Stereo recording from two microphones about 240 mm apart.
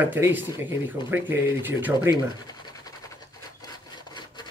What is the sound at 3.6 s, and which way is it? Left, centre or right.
Wood, centre.